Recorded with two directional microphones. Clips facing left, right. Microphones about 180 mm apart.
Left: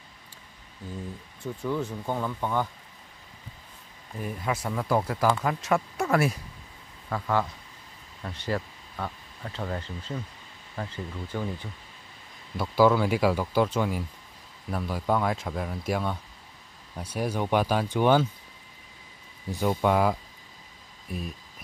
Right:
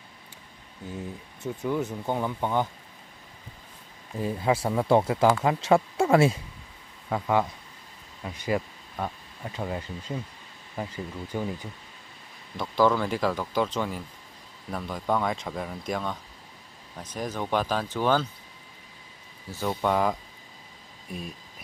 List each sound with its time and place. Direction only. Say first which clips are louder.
1.4 s speech: right 2 dB; 20° right (ahead or behind)
4.2 s speech: right 5 dB; 25° right (ahead or behind); by 11.7 s 10° right (ahead or behind)
12.5 s speech: left 2 dB; 5° left (ahead or behind)
19.5 s speech: left 2 dB; 10° left (ahead or behind)